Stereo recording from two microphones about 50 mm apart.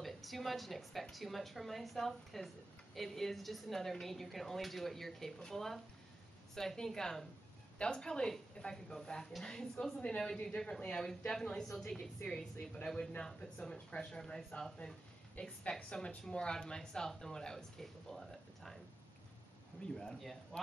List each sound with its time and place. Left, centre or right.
0.0 s speech: centre
15.4 s speech: left; by 18.8 s centre
20.0 s speech: centre